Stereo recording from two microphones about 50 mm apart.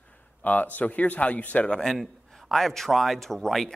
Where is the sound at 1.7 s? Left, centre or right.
Centre.